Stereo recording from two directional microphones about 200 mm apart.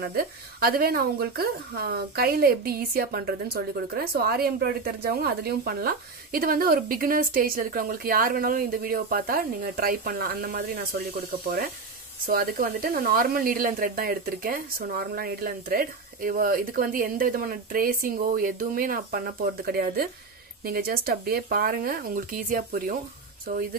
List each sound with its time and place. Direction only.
0.0 s speech: 50° right (ahead or behind)